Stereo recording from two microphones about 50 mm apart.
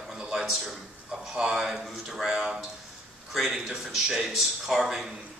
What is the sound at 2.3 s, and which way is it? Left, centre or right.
Speech, centre.